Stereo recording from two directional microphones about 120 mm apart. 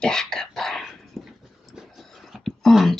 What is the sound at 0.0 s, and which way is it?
Dog, 5° left (ahead or behind).